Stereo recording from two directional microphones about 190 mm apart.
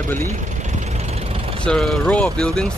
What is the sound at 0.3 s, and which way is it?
Vehicle, 40° right (ahead or behind).